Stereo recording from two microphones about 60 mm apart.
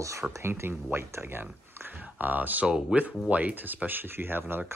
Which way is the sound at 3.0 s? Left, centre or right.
Right.